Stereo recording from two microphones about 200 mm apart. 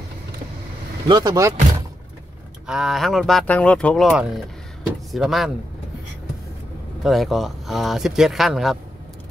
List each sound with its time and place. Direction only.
1.0 s speech: 20° right (ahead or behind)
2.6 s speech: 5° right (ahead or behind)
7.0 s speech: centre (ahead or behind)